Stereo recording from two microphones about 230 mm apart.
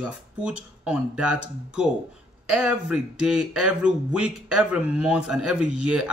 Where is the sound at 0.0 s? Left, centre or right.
Centre.